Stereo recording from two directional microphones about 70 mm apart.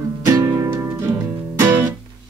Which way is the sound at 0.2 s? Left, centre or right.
Right.